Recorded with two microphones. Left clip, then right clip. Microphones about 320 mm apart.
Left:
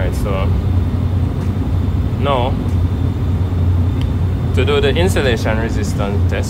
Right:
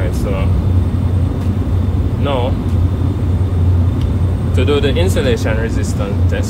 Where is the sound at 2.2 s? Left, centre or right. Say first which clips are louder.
Left 2 dB; left.